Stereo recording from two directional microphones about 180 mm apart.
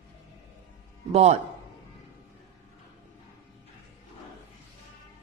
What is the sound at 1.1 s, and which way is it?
Speech, 35° right (ahead or behind).